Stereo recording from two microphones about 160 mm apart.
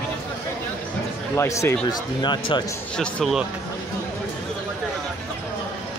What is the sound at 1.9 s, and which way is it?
Speech, 30° left (ahead or behind).